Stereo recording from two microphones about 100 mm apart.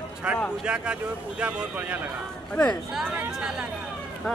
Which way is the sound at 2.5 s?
10° left (ahead or behind).